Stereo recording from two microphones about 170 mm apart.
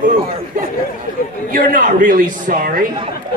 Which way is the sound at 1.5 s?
55° right (ahead or behind).